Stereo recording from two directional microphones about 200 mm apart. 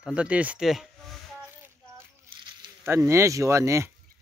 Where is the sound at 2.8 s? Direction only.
10° right (ahead or behind).